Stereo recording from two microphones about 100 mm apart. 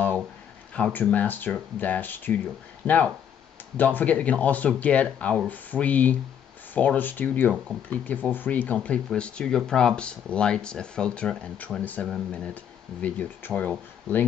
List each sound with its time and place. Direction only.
0.7 s speech: 15° left (ahead or behind)